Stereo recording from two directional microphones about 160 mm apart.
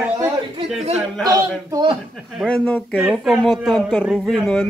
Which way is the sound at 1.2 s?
25° right (ahead or behind).